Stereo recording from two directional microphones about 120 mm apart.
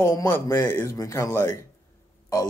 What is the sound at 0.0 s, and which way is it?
Speech, 20° left (ahead or behind).